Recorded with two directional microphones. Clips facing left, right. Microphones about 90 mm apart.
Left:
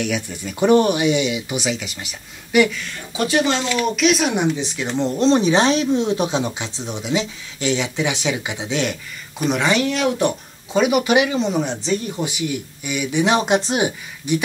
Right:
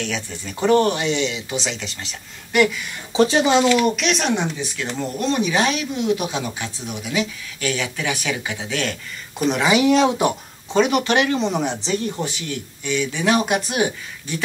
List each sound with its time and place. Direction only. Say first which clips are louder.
0.0 s speech: left 4 dB; 10° left (ahead or behind)
3.1 s speech: right 3 dB; 25° right (ahead or behind)
3.6 s speech: right 1 dB; centre (ahead or behind)
4.4 s speech: left 4 dB; 20° left (ahead or behind)
9.5 s speech: right 2 dB; 5° right (ahead or behind)
10.7 s speech: left 1 dB; 10° left (ahead or behind)
12.2 s speech: left 3 dB; 15° left (ahead or behind)